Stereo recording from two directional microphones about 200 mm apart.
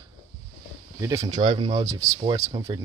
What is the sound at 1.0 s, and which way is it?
Speech, 15° right (ahead or behind).